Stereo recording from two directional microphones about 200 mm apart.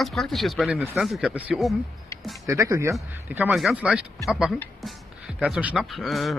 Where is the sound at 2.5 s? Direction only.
15° right (ahead or behind).